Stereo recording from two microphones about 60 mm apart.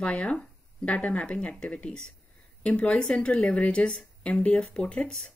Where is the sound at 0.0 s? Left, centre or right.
Centre.